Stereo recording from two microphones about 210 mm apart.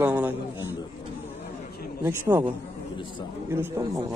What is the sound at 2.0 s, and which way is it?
Speech, 15° right (ahead or behind).